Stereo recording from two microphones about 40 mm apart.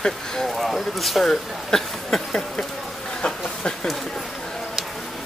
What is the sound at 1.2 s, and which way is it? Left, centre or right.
Speech, centre.